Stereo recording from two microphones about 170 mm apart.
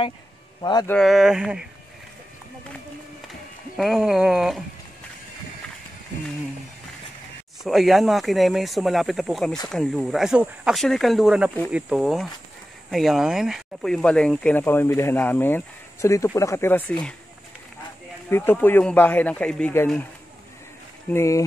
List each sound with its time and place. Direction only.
0.6 s speech: 25° left (ahead or behind)
0.8 s speech: centre (ahead or behind)
3.7 s speech: centre (ahead or behind)
7.6 s speech: centre (ahead or behind)
18.3 s speech: 15° left (ahead or behind)
21.1 s speech: 15° left (ahead or behind)